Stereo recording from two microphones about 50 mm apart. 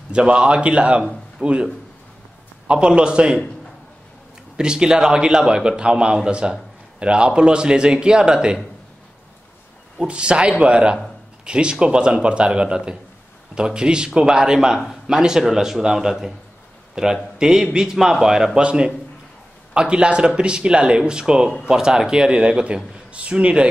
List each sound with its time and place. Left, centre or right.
0.1 s speech: centre
2.7 s speech: centre
4.6 s a man's voice: centre
9.9 s a man's voice: right